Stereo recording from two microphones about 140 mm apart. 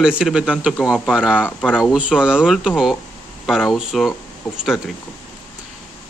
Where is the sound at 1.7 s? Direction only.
5° right (ahead or behind).